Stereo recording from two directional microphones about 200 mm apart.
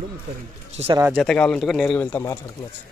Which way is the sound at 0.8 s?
30° right (ahead or behind).